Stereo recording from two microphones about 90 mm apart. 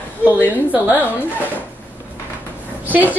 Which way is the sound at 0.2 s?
20° left (ahead or behind).